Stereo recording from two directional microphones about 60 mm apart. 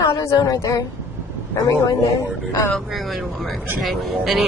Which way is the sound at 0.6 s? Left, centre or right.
Left.